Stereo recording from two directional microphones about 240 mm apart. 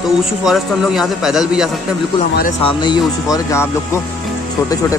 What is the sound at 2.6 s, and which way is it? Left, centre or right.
Speech, centre.